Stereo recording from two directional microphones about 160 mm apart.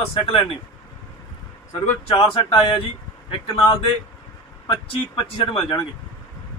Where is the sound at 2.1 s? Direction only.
35° left (ahead or behind).